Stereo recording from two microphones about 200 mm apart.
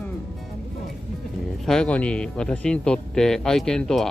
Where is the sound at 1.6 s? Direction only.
5° left (ahead or behind).